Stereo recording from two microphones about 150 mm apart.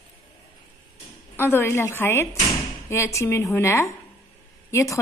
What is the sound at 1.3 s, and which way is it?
A woman's voice, 15° left (ahead or behind).